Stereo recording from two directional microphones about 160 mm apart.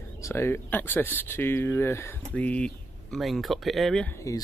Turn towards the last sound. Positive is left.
turn(degrees=20)  # may be behind; listen again after turning